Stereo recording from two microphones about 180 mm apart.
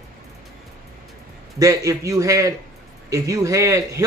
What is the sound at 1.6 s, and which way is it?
Speech, 15° right (ahead or behind).